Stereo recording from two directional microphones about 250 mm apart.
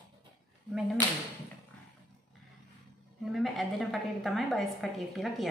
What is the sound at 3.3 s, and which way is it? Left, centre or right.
A woman's voice, centre.